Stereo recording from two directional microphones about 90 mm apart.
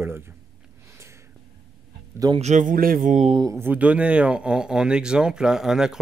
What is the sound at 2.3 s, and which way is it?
Speech, 50° right (ahead or behind).